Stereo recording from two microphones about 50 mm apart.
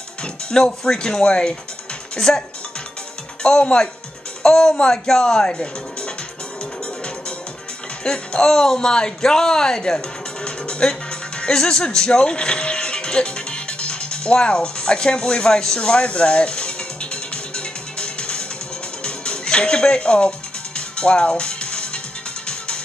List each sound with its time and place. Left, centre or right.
0.2 s speech: centre
3.4 s speech: centre
8.0 s speech: centre
11.4 s music: centre